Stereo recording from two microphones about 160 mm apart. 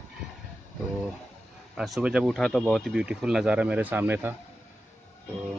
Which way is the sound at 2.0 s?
5° right (ahead or behind).